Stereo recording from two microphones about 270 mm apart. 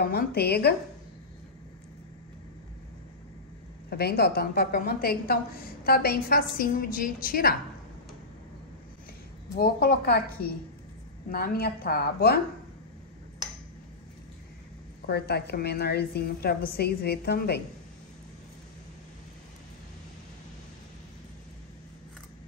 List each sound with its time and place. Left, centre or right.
0.1 s a woman's voice: left
3.9 s a woman's voice: left
9.6 s a woman's voice: left
15.0 s a woman's voice: left